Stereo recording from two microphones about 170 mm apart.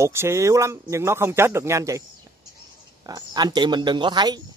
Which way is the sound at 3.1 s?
25° right (ahead or behind).